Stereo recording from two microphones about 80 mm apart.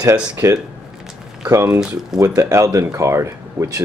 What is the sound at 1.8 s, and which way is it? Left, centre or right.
Speech, centre.